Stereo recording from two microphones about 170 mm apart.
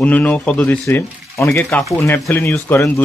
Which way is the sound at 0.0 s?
5° left (ahead or behind).